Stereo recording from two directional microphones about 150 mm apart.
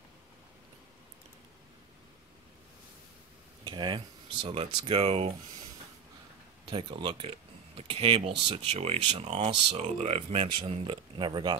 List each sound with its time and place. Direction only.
3.6 s speech: 30° right (ahead or behind)
6.7 s speech: 35° right (ahead or behind)